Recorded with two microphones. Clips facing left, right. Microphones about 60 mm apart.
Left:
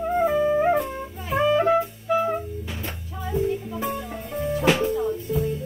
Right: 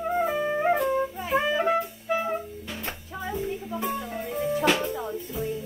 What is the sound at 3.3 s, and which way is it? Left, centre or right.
Music, centre.